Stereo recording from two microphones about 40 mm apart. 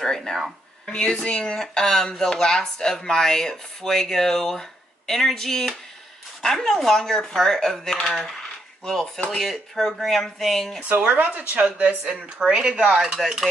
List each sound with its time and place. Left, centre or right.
0.0 s speech: centre
10.8 s speech: right
12.4 s speech: centre
13.2 s speech: centre